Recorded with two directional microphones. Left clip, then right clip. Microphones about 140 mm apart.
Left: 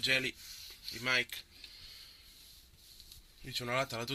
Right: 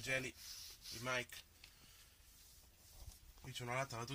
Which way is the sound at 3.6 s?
25° left (ahead or behind).